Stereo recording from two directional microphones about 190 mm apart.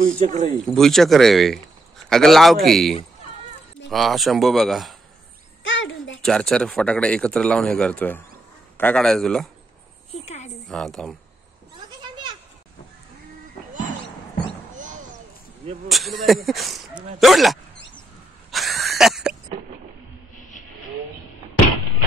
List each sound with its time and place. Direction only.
0.0 s speech: 40° right (ahead or behind)
0.7 s a man's voice: centre (ahead or behind)
5.6 s a sound: 85° left
6.2 s a man's voice: 5° left (ahead or behind)
10.2 s a woman's voice: 35° left (ahead or behind)
10.7 s a man's voice: centre (ahead or behind)
14.8 s a sound: 40° right (ahead or behind)
15.9 s a man's voice: centre (ahead or behind)
18.5 s a sound: centre (ahead or behind)